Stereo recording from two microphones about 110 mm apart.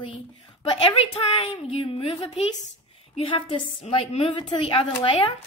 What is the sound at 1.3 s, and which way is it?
Child singing, 55° left (ahead or behind).